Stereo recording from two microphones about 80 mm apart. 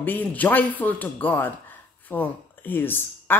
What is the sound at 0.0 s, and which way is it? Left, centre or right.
Speech, left.